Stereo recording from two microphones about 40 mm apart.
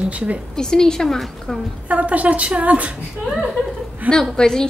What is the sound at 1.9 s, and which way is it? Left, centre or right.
Speech, right.